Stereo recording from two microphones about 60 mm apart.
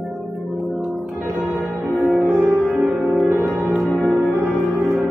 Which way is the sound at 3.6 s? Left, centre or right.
Centre.